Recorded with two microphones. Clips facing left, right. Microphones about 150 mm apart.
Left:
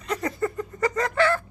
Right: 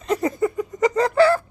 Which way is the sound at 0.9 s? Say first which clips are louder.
Right 7 dB; 35° right (ahead or behind).